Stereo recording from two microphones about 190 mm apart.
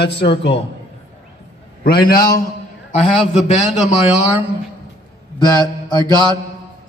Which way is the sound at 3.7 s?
5° right (ahead or behind).